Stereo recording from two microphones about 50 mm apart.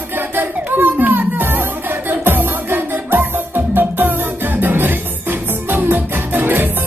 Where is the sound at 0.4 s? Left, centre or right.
Right.